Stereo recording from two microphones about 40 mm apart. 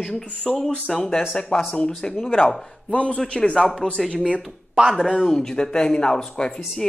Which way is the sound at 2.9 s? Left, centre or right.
Left.